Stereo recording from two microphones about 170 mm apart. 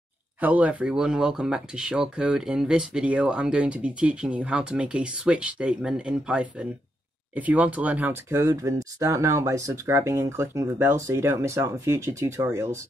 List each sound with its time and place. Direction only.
0.4 s speech: 10° right (ahead or behind)